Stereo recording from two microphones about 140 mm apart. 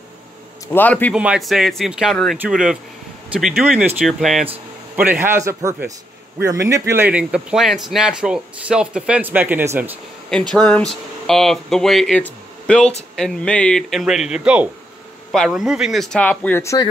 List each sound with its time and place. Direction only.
0.7 s a man's voice: 15° left (ahead or behind)
1.1 s speech: 5° right (ahead or behind)
4.9 s speech: 10° right (ahead or behind)
10.5 s speech: 5° left (ahead or behind); by 16.9 s 25° left (ahead or behind)